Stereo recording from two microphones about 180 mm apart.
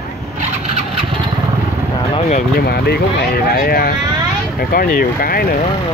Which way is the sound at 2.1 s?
40° left (ahead or behind).